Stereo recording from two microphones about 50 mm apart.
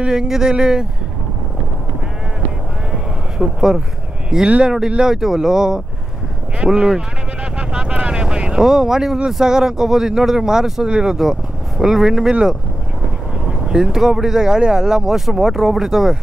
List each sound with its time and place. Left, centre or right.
0.0 s speech: centre
2.9 s vehicle: centre
4.5 s speech: centre